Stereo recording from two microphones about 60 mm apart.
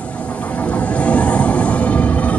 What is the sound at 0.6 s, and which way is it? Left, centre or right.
Music, left.